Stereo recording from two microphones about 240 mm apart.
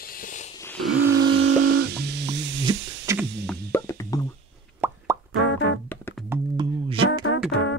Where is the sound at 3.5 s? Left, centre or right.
Centre.